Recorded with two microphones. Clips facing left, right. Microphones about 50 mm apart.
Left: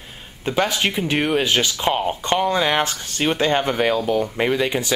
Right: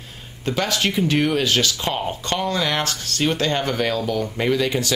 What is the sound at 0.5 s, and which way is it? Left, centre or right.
Speech, centre.